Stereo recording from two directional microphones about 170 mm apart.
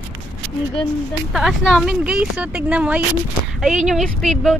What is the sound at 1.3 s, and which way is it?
Speech, 5° right (ahead or behind).